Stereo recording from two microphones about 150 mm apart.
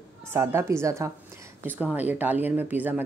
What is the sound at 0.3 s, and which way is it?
Speech, 15° right (ahead or behind).